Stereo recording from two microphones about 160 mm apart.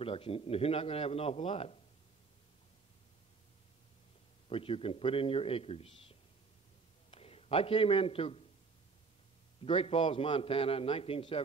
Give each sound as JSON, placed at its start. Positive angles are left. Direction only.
{"t": 0.0, "sound": "a man's voice", "side_deg": 35}
{"t": 4.5, "sound": "a man's voice", "side_deg": 35}
{"t": 9.6, "sound": "a man's voice", "side_deg": 35}